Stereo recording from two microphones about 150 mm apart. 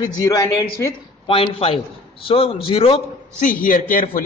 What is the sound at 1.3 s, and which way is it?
A man's voice, 35° left (ahead or behind).